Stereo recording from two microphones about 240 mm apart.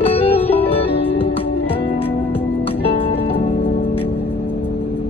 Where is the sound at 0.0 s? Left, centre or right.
Left.